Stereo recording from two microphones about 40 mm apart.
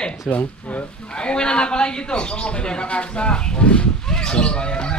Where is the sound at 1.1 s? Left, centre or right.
Left.